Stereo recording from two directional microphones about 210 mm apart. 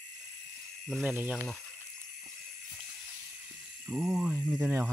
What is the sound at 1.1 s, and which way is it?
Speech, 10° right (ahead or behind).